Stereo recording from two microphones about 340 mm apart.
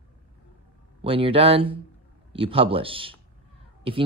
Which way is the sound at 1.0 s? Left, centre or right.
Centre.